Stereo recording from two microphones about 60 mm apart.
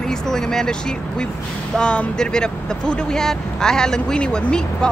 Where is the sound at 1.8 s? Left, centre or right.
Centre.